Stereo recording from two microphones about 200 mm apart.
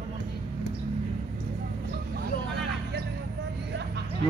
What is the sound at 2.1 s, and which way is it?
Vehicle, 55° right (ahead or behind).